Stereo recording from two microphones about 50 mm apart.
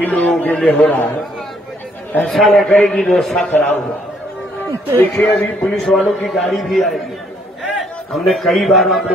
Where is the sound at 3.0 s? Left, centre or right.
Centre.